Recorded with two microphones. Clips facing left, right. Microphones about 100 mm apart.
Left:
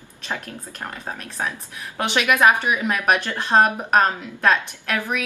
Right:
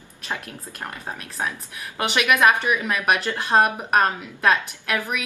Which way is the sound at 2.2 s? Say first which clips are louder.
Left 1 dB; 15° left (ahead or behind).